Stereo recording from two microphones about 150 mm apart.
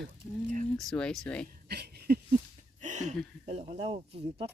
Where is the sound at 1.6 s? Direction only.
90° right.